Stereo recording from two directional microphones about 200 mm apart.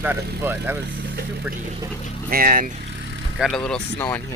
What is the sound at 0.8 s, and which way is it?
Speech, 60° right (ahead or behind).